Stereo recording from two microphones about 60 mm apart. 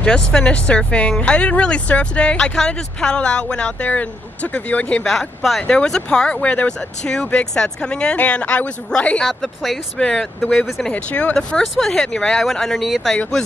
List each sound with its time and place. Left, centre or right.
0.0 s speech: centre
5.0 s speech: centre; by 9.2 s left
9.2 s speech: centre
9.9 s speech: centre
10.9 s speech: left
11.3 s speech: centre